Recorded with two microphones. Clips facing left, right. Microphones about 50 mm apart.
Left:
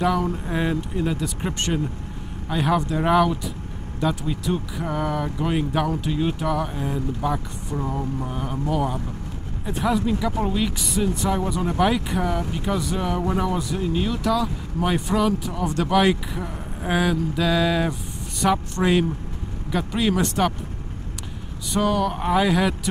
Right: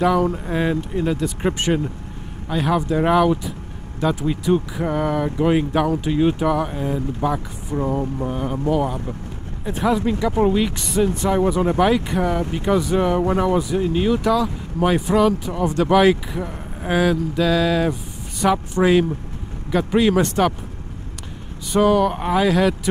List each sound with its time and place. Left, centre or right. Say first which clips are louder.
0.0 s speech: right 4 dB; centre
1.4 s speech: right 7 dB; centre
2.5 s speech: right 2 dB; centre
10.3 s speech: right 6 dB; centre
10.8 s speech: right 4 dB; centre
11.2 s speech: right 5 dB; centre
11.8 s speech: right 1 dB; centre
12.4 s speech: right 4 dB; right
12.6 s speech: right 7 dB; centre
12.9 s speech: right 6 dB; centre
14.2 s speech: right 3 dB; centre
21.7 s speech: right 6 dB; centre